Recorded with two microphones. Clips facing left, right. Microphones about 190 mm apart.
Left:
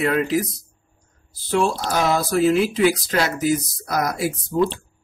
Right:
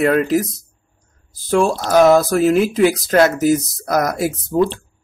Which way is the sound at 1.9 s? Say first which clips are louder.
Right 9 dB; 45° right (ahead or behind).